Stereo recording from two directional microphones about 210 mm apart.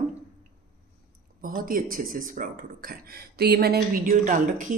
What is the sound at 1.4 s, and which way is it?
Speech, 45° right (ahead or behind).